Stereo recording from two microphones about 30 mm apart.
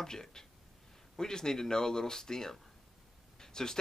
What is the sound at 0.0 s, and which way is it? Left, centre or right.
Speech, centre.